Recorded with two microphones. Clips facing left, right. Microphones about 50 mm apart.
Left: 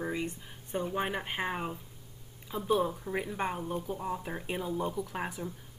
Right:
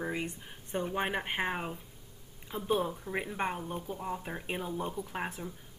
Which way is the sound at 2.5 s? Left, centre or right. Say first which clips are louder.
Left 2 dB; centre.